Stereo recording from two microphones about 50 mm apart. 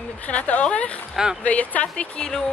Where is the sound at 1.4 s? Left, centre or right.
Left.